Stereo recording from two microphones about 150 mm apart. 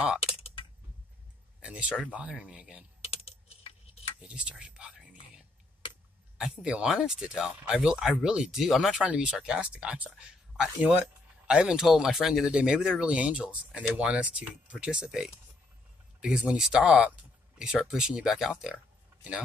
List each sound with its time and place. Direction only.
0.2 s typing: 40° left (ahead or behind)
1.6 s speech: 5° right (ahead or behind)
3.0 s typing: 40° left (ahead or behind)
4.2 s speech: 10° right (ahead or behind)
6.3 s speech: 5° right (ahead or behind)